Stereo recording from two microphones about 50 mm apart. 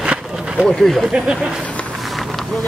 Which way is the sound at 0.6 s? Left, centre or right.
Centre.